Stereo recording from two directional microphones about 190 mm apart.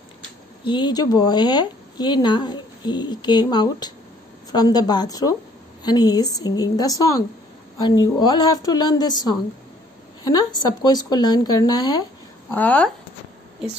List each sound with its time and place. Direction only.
0.7 s speech: 25° left (ahead or behind)
10.8 s speech: 20° left (ahead or behind)
12.5 s speech: 10° left (ahead or behind)